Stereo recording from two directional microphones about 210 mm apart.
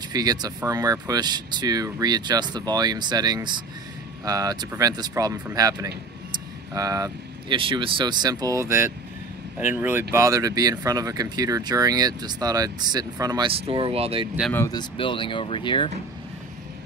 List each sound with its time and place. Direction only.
0.1 s speech: 20° right (ahead or behind)
14.5 s speech: 15° left (ahead or behind)